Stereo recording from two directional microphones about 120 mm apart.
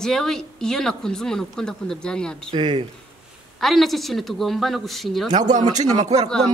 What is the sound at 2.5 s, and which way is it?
Speech, 40° right (ahead or behind).